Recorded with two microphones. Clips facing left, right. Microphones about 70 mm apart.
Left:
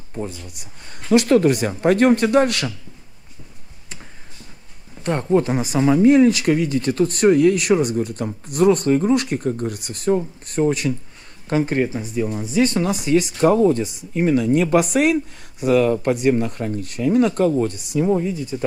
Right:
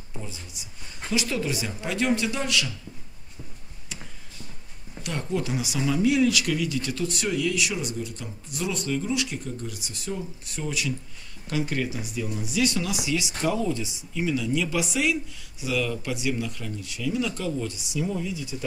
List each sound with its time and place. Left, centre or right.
0.2 s speech: left
5.0 s speech: left